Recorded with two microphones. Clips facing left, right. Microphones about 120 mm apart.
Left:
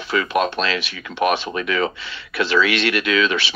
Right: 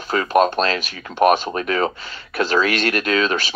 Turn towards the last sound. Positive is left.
turn(degrees=-40)  # may be behind; listen again after turning